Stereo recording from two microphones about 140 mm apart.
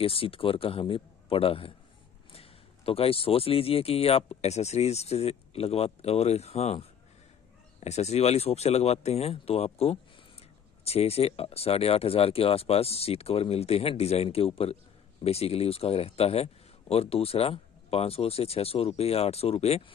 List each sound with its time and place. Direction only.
0.0 s speech: 40° left (ahead or behind)